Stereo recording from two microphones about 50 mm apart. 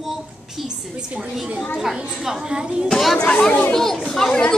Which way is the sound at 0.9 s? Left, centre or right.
Right.